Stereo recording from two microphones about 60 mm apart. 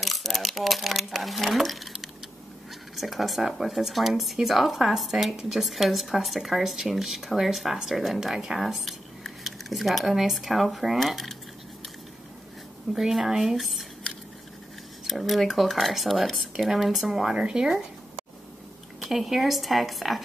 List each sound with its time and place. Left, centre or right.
0.0 s speech: centre
12.9 s speech: centre
15.0 s speech: centre
19.0 s speech: centre